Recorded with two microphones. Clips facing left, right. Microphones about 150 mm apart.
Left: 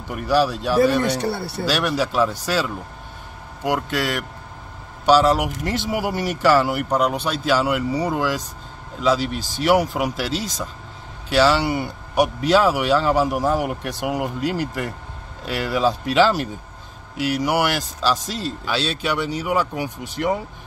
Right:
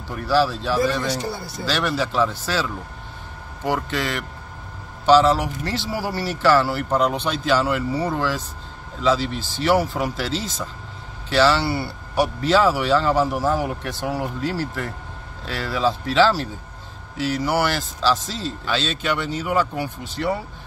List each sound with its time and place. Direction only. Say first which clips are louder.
0.1 s speech: left 1 dB; 15° left (ahead or behind)
1.2 s speech: left 5 dB; 65° left (ahead or behind)
1.7 s speech: left 1 dB; 10° left (ahead or behind)
3.7 s speech: left 2 dB; 10° left (ahead or behind)